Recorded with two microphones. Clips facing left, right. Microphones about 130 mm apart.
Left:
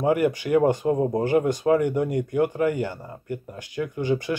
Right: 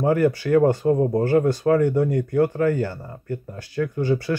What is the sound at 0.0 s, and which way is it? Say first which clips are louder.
Speech: right 2 dB; 15° left (ahead or behind).